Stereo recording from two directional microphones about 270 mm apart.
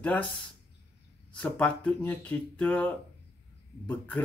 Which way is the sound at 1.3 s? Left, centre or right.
Centre.